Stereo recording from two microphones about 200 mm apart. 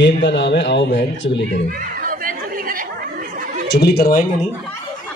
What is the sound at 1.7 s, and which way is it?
Chatter, 45° right (ahead or behind).